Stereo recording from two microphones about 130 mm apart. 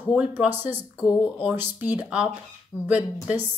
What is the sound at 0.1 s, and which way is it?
Speech, 10° right (ahead or behind).